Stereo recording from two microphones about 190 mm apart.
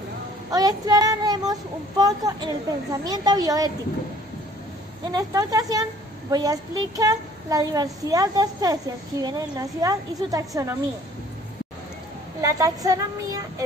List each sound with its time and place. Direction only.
0.5 s a child's voice: 20° right (ahead or behind)
5.1 s a child's voice: 20° right (ahead or behind)
12.4 s a child's voice: 20° right (ahead or behind)